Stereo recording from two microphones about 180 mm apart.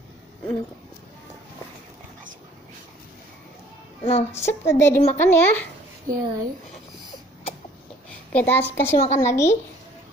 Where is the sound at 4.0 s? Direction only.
35° left (ahead or behind).